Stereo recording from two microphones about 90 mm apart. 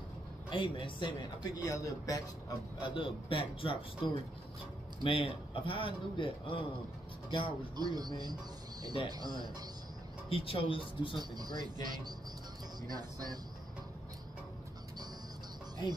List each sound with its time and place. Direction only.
0.5 s speech: 65° left (ahead or behind)
1.6 s a man's voice: 35° left (ahead or behind)
2.8 s a man's voice: 65° left (ahead or behind)
7.7 s speech: 50° right (ahead or behind)
10.3 s speech: 90° left; by 11.1 s 70° left (ahead or behind)
11.1 s speech: 50° right (ahead or behind)